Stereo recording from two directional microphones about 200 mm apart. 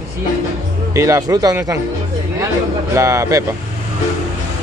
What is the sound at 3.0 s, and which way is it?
Speech, 15° right (ahead or behind).